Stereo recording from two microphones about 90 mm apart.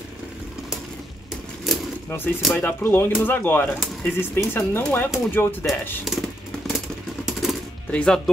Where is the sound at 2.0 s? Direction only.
25° left (ahead or behind).